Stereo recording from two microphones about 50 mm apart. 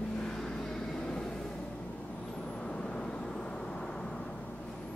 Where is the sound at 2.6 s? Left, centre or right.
Centre.